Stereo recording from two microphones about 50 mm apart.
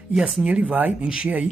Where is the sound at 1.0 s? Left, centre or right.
Centre.